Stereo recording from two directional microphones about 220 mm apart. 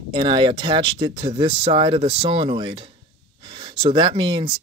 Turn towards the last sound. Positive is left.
turn(degrees=-20)  # may be behind; listen again after turning